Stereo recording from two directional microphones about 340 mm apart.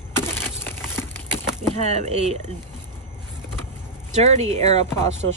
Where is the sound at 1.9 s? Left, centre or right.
Centre.